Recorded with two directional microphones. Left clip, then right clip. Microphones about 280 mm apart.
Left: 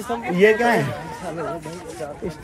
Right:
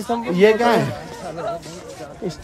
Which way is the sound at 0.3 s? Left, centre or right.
Centre.